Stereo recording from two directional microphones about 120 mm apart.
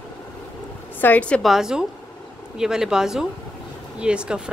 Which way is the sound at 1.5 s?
5° right (ahead or behind).